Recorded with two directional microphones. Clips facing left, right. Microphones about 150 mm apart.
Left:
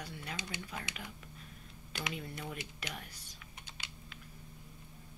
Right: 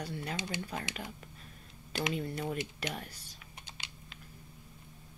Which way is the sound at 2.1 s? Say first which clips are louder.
Right 8 dB; 40° right (ahead or behind).